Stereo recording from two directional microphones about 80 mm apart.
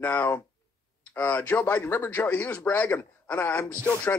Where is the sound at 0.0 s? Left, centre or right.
Left.